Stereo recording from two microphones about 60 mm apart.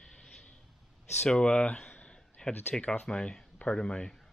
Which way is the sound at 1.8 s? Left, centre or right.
Left.